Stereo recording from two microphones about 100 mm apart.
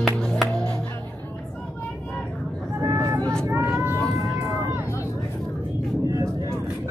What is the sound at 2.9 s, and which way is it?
Vehicle, 35° right (ahead or behind).